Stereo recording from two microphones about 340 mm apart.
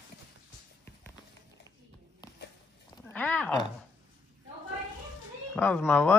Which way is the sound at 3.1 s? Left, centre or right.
Centre.